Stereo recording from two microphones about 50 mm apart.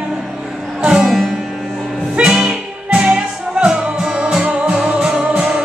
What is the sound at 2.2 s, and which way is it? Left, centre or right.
Music, right.